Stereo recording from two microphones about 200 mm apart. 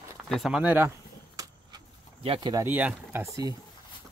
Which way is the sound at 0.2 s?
Centre (ahead or behind).